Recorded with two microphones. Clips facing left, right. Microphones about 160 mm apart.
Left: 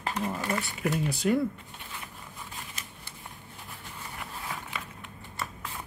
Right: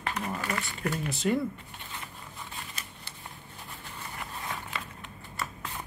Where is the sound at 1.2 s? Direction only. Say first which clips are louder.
Left 2 dB; centre (ahead or behind).